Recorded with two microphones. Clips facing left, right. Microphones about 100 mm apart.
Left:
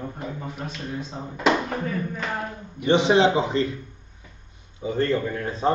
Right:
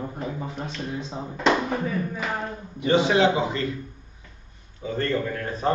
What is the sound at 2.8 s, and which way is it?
Speech, 25° left (ahead or behind).